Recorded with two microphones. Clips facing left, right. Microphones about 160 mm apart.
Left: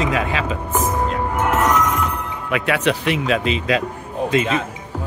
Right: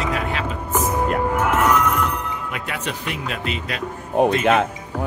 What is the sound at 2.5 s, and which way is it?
Speech, 85° left.